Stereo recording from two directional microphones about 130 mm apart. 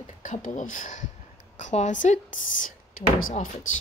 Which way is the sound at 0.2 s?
80° left.